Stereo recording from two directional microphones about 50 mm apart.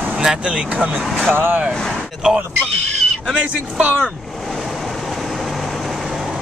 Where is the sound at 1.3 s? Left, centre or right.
Right.